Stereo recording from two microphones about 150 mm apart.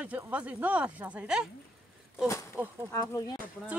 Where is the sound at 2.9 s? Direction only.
20° left (ahead or behind).